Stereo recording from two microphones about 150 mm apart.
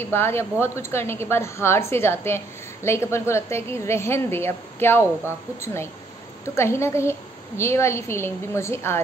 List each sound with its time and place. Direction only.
0.0 s a woman's voice: 15° left (ahead or behind)
6.4 s a woman's voice: 15° left (ahead or behind)